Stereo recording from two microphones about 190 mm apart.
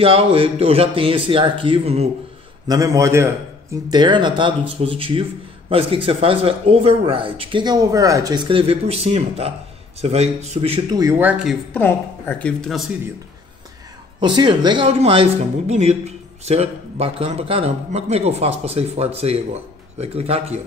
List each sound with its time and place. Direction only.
0.0 s a man's voice: 30° right (ahead or behind)
2.7 s a man's voice: 15° right (ahead or behind); by 10.8 s 35° right (ahead or behind)
10.9 s speech: 20° right (ahead or behind)
11.7 s a woman's voice: 10° left (ahead or behind)
14.2 s a man's voice: 25° right (ahead or behind)